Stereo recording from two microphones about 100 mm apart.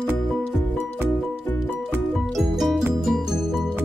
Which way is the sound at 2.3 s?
Centre (ahead or behind).